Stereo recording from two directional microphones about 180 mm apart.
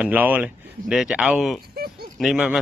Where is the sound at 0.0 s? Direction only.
10° right (ahead or behind).